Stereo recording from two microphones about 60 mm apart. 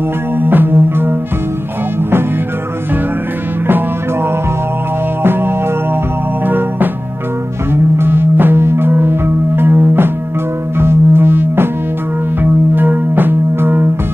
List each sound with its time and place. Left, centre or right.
0.4 s music: right
3.6 s music: right